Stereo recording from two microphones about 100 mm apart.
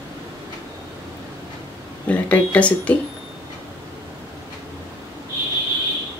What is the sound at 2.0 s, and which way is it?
Speech, 15° left (ahead or behind).